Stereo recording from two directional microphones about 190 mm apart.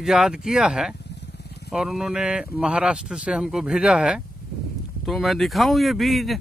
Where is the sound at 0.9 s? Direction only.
65° left (ahead or behind).